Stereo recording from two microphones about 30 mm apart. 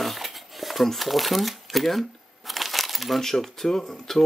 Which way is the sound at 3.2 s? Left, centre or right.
Centre.